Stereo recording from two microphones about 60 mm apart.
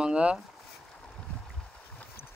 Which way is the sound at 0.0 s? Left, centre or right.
Centre.